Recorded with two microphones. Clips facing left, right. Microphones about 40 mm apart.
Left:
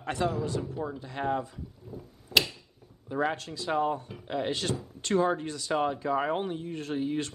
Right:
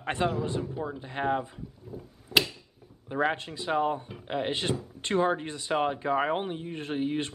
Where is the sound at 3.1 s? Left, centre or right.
Right.